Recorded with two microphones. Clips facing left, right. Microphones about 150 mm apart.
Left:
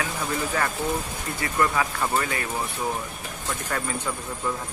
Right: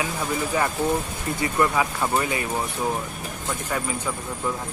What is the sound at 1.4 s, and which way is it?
Speech, 15° right (ahead or behind).